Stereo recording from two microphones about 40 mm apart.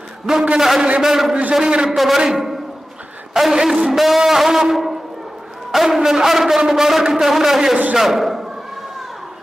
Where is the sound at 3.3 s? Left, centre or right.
Centre.